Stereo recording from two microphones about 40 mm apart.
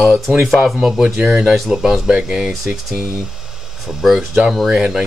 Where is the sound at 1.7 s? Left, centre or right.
Centre.